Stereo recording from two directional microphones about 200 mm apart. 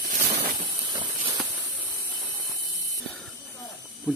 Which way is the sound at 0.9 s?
20° right (ahead or behind).